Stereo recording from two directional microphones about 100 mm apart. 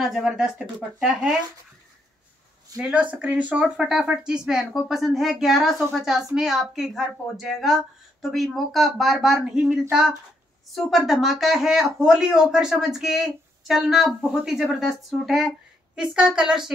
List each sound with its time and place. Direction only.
0.0 s speech: centre (ahead or behind)
2.8 s speech: 10° right (ahead or behind)